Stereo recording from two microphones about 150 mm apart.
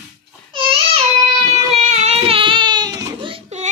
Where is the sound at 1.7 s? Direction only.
45° right (ahead or behind); by 3.3 s 30° right (ahead or behind).